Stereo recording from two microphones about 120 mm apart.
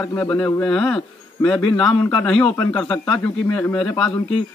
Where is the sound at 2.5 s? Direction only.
15° left (ahead or behind).